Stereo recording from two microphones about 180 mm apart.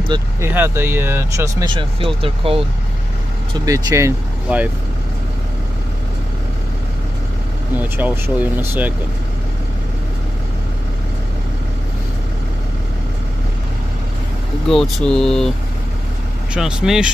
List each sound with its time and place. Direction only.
0.1 s speech: 15° right (ahead or behind); by 2.6 s 30° right (ahead or behind)
3.5 s speech: 20° right (ahead or behind)
7.7 s speech: 10° right (ahead or behind)
14.7 s speech: centre (ahead or behind)
16.5 s speech: 5° right (ahead or behind)